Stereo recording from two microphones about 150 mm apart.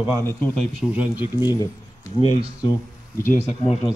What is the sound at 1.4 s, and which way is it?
Speech, 25° left (ahead or behind).